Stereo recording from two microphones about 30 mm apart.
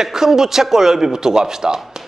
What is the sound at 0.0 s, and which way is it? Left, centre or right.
Speech, centre.